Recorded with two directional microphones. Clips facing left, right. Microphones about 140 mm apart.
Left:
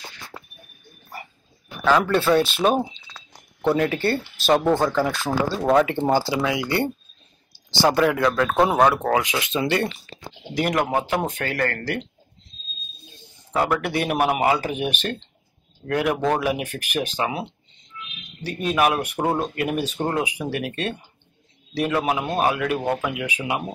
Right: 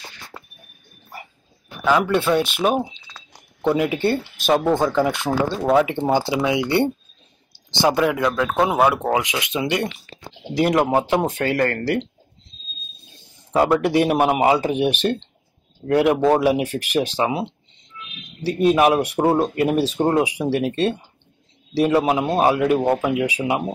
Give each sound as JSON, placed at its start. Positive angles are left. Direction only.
{"t": 1.9, "sound": "speech", "side_deg": -10}
{"t": 4.5, "sound": "speech", "side_deg": -5}
{"t": 4.9, "sound": "speech", "side_deg": -20}
{"t": 5.6, "sound": "speech", "side_deg": -5}
{"t": 6.2, "sound": "speech", "side_deg": -20}
{"t": 7.9, "sound": "speech", "side_deg": -5}
{"t": 8.9, "sound": "speech", "side_deg": -20}
{"t": 10.5, "sound": "speech", "side_deg": -25}
{"t": 13.7, "sound": "speech", "side_deg": -25}
{"t": 23.1, "sound": "speech", "side_deg": -35}
{"t": 23.4, "sound": "speech", "side_deg": -20}